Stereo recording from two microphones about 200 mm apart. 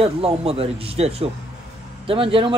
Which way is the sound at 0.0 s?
30° right (ahead or behind).